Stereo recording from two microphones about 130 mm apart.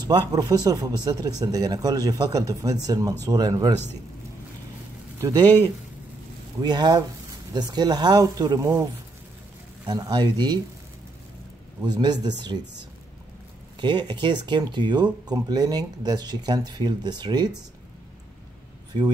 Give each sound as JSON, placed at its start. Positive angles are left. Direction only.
{"t": 0.3, "sound": "speech", "side_deg": -30}
{"t": 5.4, "sound": "speech", "side_deg": 15}
{"t": 6.6, "sound": "speech", "side_deg": -30}
{"t": 9.8, "sound": "speech", "side_deg": -30}
{"t": 11.8, "sound": "speech", "side_deg": -35}
{"t": 13.7, "sound": "speech", "side_deg": -35}